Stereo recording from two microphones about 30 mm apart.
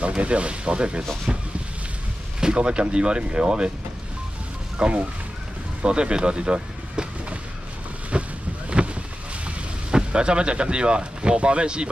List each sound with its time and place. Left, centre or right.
0.2 s speech: right
4.7 s speech: right
8.1 s boat: right
9.8 s speech: right